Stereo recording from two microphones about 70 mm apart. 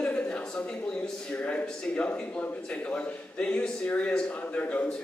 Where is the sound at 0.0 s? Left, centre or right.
Centre.